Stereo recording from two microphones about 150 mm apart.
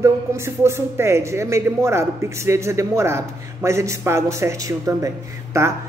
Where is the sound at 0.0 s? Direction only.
20° right (ahead or behind).